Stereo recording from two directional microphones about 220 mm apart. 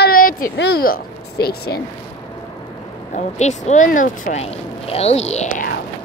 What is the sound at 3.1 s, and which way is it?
Speech, 30° left (ahead or behind).